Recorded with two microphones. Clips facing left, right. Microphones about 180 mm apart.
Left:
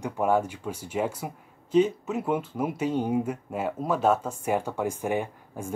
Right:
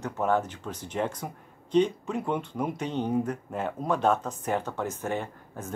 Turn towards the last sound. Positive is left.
turn(degrees=10)  # may be behind; listen again after turning